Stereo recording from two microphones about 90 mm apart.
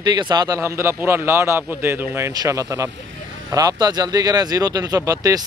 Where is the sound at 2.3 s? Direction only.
40° right (ahead or behind).